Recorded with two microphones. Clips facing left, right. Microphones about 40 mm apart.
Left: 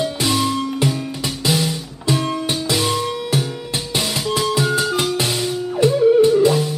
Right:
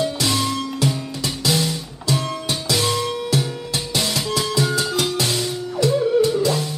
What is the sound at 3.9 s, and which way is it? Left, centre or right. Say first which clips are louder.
Music: left 2 dB; left.